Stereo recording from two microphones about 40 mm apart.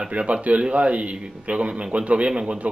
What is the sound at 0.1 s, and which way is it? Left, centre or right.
Speech, right.